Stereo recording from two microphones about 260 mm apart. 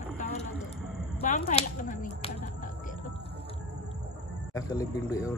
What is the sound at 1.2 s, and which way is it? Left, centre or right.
Speech, left.